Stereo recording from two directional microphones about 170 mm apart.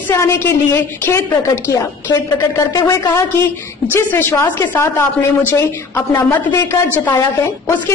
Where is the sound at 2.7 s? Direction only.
20° left (ahead or behind).